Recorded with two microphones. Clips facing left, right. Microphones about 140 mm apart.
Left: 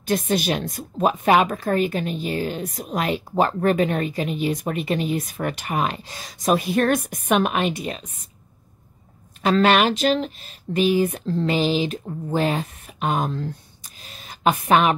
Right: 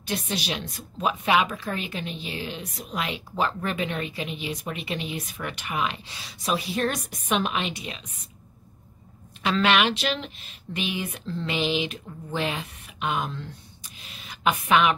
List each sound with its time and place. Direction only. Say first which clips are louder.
0.0 s a woman's voice: left 8 dB; 45° left (ahead or behind)
9.4 s speech: left 5 dB; 40° left (ahead or behind)
14.0 s a sound: left 4 dB; 40° left (ahead or behind)